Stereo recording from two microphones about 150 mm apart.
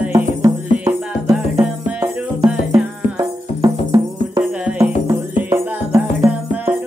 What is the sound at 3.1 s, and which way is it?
Music, 25° right (ahead or behind).